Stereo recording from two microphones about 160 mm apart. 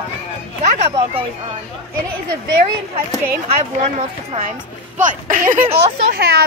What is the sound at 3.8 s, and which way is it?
Speech, 45° right (ahead or behind).